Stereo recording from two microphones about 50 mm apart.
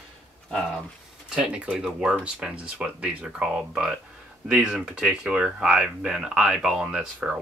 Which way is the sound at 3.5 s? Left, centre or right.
Centre.